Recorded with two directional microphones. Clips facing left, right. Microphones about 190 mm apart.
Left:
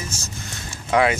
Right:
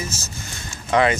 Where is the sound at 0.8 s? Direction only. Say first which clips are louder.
Even; 5° left (ahead or behind).